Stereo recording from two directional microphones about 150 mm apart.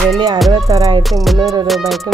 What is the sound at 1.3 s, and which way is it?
Speech, 25° right (ahead or behind).